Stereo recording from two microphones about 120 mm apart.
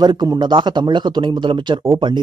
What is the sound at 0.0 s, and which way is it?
Speech, 35° right (ahead or behind).